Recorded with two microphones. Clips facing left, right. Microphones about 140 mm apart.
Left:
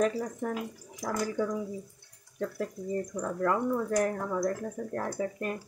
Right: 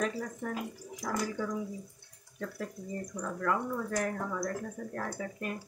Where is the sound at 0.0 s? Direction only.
35° left (ahead or behind).